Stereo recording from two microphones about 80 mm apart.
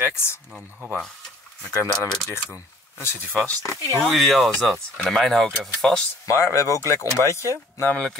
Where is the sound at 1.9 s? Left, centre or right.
Centre.